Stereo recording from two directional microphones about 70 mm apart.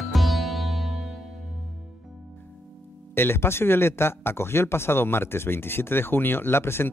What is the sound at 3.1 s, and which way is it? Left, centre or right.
Speech, left.